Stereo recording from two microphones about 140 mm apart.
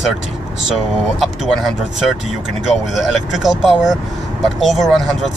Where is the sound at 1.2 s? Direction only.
Centre (ahead or behind).